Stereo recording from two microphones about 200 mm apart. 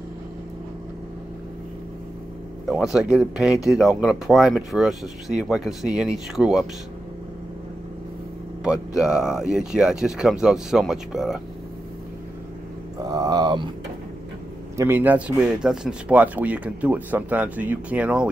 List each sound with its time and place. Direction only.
2.7 s speech: centre (ahead or behind)
8.6 s speech: 5° right (ahead or behind)
13.0 s a sound: 20° right (ahead or behind)
14.8 s speech: 10° right (ahead or behind)